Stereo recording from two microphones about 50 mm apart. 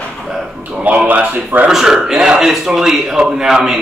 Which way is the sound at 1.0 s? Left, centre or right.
Right.